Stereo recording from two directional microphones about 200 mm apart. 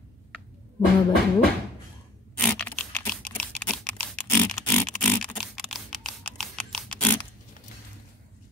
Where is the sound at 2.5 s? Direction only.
5° left (ahead or behind).